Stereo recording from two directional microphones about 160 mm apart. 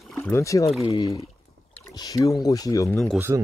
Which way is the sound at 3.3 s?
25° right (ahead or behind).